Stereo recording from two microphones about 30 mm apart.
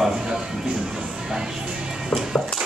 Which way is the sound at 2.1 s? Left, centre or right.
Left.